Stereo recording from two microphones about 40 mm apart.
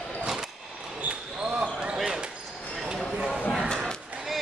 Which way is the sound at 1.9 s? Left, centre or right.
Centre.